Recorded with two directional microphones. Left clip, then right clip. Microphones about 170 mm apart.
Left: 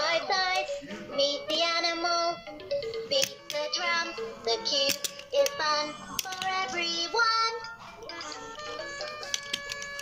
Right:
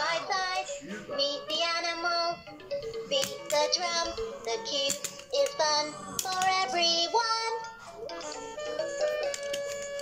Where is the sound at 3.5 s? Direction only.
30° right (ahead or behind).